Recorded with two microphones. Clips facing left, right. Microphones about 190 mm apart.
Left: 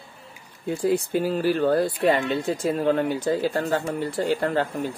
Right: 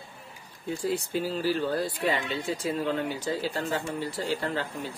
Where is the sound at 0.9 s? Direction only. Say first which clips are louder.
Left 7 dB; 55° left (ahead or behind).